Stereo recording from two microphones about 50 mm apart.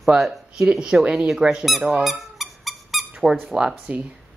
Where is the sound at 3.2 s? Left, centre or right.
Centre.